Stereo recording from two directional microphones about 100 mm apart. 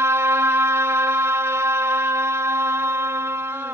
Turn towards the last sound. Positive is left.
turn(degrees=-25)  # may be behind; listen again after turning